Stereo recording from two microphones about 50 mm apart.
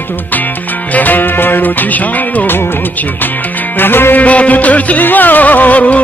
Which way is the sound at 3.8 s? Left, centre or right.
Left.